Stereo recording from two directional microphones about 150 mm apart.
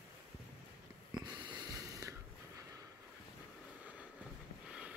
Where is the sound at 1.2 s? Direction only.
30° right (ahead or behind).